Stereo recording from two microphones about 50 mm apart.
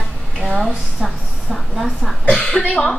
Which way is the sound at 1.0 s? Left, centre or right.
Centre.